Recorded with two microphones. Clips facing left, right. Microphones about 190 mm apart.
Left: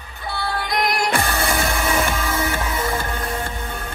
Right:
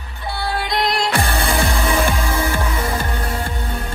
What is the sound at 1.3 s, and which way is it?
Music, 30° right (ahead or behind).